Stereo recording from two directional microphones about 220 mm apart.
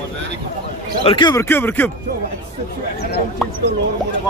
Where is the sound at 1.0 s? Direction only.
20° left (ahead or behind).